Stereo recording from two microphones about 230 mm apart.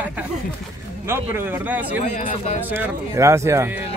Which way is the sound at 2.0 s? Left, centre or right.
Left.